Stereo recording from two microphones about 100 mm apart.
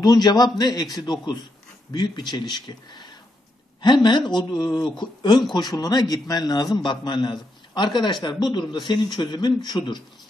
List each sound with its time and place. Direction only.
0.0 s a man's voice: 40° left (ahead or behind)